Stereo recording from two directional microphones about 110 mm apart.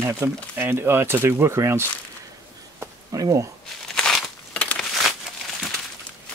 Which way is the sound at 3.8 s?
5° left (ahead or behind).